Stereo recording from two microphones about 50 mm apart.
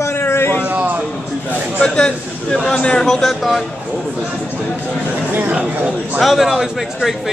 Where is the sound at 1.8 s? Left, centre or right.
Centre.